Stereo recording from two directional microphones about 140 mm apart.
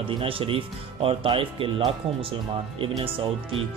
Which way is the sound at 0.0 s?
40° right (ahead or behind).